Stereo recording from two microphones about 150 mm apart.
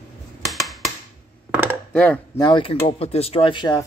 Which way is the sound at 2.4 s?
35° left (ahead or behind).